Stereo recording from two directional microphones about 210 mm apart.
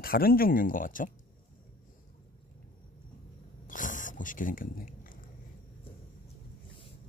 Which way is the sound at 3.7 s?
40° left (ahead or behind).